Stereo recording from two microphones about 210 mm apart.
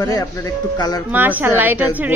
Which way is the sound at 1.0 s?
10° right (ahead or behind).